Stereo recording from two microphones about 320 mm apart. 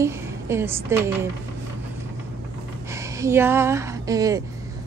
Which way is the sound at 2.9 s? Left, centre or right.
Centre.